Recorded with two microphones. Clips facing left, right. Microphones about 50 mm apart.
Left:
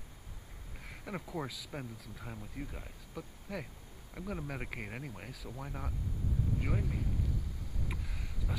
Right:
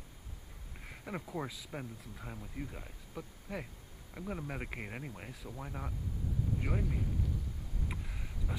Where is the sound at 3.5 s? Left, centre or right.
Centre.